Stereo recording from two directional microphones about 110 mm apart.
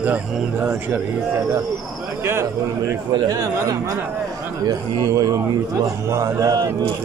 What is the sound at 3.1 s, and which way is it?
A man's voice, 40° right (ahead or behind).